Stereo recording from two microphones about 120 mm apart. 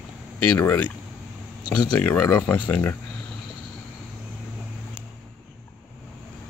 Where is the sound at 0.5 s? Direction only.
15° left (ahead or behind).